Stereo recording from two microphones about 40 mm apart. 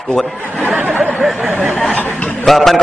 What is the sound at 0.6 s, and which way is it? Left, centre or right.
Speech, right.